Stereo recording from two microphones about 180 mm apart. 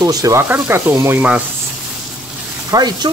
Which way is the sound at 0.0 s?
20° right (ahead or behind).